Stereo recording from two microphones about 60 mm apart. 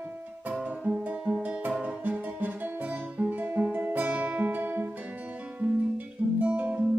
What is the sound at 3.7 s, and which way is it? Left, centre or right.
Guitar, right.